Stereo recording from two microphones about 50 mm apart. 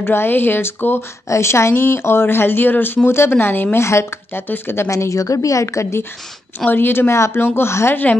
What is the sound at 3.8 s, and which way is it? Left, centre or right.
Speech, left.